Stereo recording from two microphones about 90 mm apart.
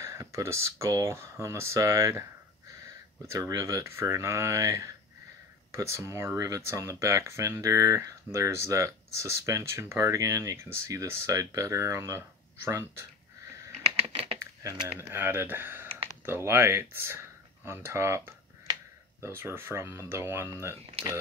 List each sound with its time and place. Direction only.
0.0 s speech: 35° right (ahead or behind)
13.8 s typing: 90° right
14.9 s speech: 25° right (ahead or behind)